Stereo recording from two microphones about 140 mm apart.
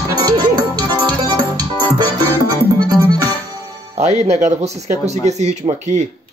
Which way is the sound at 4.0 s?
50° right (ahead or behind).